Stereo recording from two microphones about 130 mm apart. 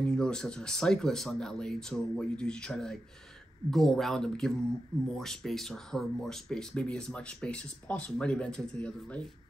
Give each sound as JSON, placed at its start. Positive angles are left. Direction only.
{"t": 0.0, "sound": "speech", "side_deg": 5}